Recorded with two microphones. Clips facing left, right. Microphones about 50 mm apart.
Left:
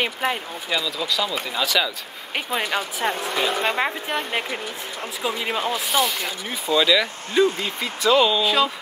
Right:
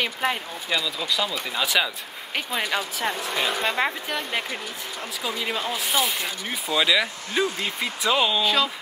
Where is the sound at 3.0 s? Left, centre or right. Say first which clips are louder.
Left 3 dB; left.